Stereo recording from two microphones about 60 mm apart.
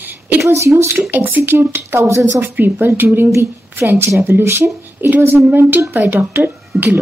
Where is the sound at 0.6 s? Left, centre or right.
Right.